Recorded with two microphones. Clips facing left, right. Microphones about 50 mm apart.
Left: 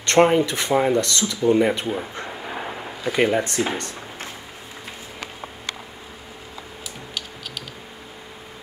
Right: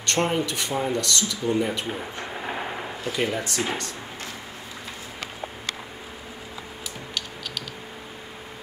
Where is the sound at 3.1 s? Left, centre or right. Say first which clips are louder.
Left 7 dB; left.